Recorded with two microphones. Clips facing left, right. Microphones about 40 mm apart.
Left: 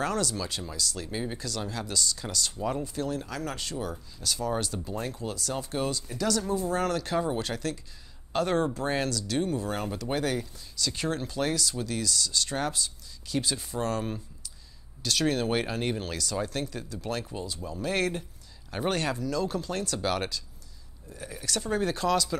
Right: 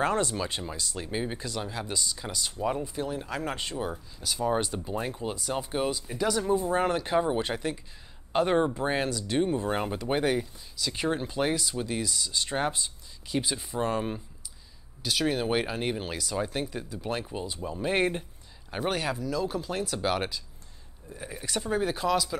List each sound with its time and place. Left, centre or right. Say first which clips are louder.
0.0 s speech: right 2 dB; right
18.7 s speech: left 1 dB; centre